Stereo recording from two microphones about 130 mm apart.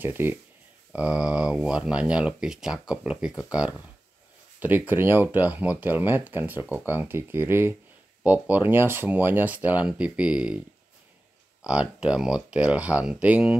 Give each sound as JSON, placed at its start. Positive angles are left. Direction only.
{"t": 0.0, "sound": "speech", "side_deg": -15}
{"t": 4.6, "sound": "speech", "side_deg": -15}
{"t": 11.6, "sound": "speech", "side_deg": -10}